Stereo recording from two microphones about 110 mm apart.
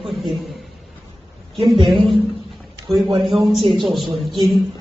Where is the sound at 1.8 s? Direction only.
Centre (ahead or behind).